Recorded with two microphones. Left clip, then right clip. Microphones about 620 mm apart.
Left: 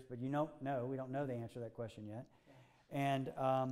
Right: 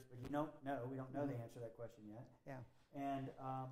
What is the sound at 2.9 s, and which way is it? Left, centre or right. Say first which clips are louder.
Speech: left 7 dB; left.